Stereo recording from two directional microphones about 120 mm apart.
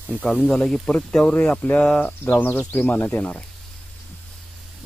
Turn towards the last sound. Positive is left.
turn(degrees=15)  # may be behind; listen again after turning